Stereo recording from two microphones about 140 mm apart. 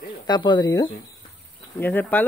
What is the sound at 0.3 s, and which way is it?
Speech, 35° left (ahead or behind).